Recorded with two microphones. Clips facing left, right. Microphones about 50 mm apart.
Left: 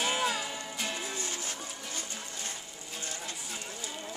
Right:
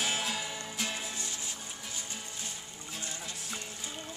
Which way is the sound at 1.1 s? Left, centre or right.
Left.